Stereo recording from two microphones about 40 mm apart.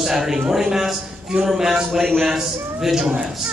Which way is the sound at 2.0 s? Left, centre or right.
Centre.